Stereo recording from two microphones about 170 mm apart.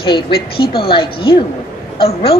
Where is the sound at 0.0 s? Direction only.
30° left (ahead or behind).